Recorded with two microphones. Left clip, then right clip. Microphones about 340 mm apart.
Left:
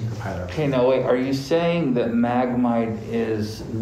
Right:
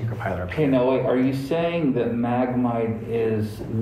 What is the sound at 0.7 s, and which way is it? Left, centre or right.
Speech, left.